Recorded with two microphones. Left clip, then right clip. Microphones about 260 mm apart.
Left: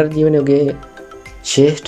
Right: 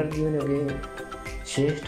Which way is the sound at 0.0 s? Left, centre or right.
Left.